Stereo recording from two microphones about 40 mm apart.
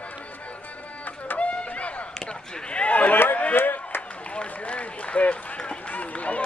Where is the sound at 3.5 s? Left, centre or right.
Left.